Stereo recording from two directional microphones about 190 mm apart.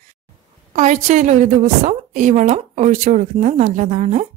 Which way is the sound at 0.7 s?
40° right (ahead or behind).